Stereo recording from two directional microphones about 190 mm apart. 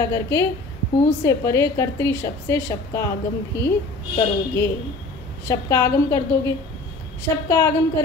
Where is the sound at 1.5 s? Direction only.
15° left (ahead or behind).